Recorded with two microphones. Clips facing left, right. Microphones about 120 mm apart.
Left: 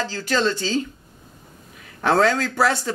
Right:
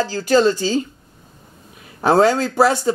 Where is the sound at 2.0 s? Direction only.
25° right (ahead or behind).